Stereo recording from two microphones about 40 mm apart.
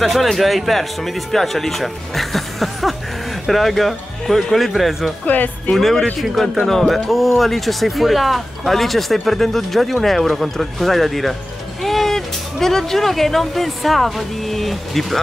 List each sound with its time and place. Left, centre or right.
0.0 s speech: centre
5.2 s speech: left
5.8 s speech: centre